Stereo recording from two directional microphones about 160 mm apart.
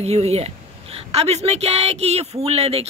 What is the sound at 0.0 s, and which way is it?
A woman's voice, 40° right (ahead or behind).